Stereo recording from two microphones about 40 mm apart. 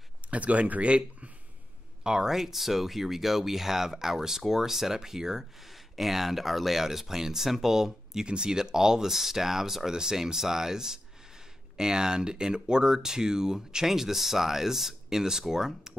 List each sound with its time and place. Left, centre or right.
0.3 s speech: right
2.0 s speech: centre